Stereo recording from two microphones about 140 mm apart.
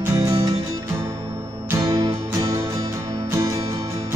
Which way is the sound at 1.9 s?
30° right (ahead or behind).